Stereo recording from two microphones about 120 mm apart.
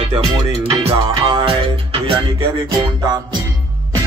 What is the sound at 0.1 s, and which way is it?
Music, 55° right (ahead or behind).